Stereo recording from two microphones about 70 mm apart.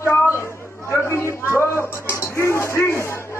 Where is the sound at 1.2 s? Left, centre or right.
Right.